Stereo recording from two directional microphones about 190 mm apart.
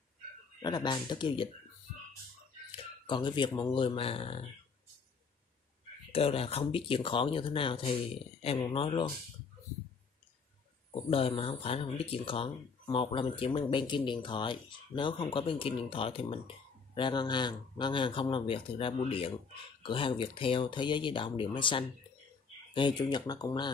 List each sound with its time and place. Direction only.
0.6 s speech: 20° left (ahead or behind)
2.7 s speech: 25° left (ahead or behind)
6.1 s speech: 30° left (ahead or behind)
10.9 s speech: 30° left (ahead or behind)